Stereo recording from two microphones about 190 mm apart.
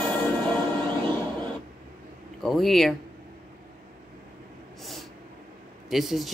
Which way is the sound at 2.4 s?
Centre (ahead or behind).